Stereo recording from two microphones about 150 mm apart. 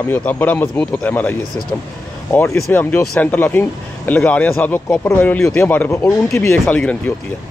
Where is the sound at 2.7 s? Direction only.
10° left (ahead or behind).